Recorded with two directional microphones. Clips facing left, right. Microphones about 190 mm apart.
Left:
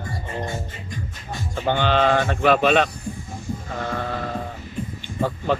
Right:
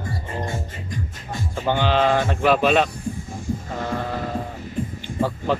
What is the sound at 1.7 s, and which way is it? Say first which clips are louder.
Speech: even; 5° right (ahead or behind).